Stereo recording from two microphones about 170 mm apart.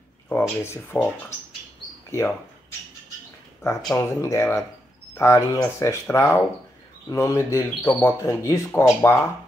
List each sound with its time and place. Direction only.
0.3 s speech: 15° left (ahead or behind)
2.0 s speech: 15° left (ahead or behind)
3.9 s speech: 15° left (ahead or behind)